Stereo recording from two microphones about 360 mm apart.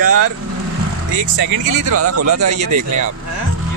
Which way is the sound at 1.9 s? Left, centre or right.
Right.